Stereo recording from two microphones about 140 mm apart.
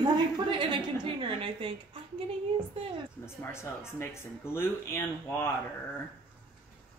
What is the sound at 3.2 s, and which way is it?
Speech, 15° left (ahead or behind).